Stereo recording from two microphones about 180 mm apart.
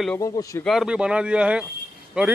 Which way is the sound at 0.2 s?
20° left (ahead or behind).